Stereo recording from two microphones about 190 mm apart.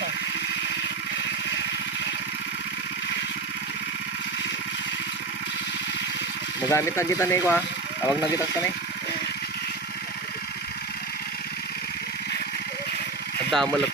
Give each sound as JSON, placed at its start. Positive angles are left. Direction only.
{"t": 6.6, "sound": "speech", "side_deg": 15}
{"t": 13.5, "sound": "speech", "side_deg": 0}